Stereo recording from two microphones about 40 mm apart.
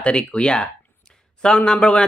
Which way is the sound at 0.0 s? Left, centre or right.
Left.